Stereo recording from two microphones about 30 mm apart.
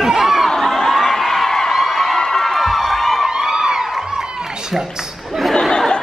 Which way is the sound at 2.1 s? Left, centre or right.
Centre.